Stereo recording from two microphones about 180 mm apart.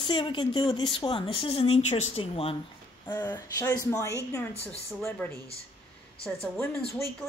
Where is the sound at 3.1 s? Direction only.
20° left (ahead or behind).